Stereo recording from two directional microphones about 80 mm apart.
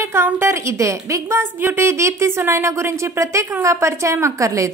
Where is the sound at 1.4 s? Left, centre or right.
Right.